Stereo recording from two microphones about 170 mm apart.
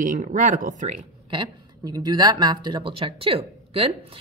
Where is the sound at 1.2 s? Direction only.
25° right (ahead or behind).